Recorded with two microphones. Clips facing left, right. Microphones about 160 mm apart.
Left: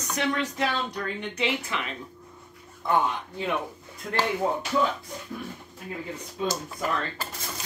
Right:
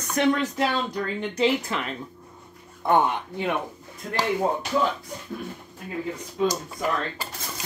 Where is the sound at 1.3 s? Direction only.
35° right (ahead or behind).